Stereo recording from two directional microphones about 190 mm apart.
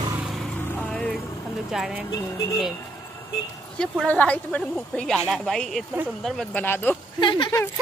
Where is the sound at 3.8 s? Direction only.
5° left (ahead or behind).